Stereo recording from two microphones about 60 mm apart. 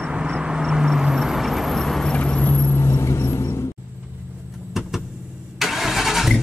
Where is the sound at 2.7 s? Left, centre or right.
Left.